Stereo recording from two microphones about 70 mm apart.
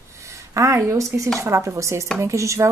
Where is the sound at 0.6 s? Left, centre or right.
Right.